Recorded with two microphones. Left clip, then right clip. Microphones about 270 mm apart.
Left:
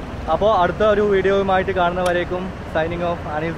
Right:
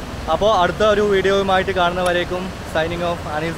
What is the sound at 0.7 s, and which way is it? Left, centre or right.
Speech, centre.